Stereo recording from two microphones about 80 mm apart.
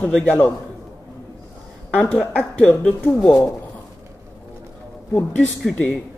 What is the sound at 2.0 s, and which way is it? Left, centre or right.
Speech, centre.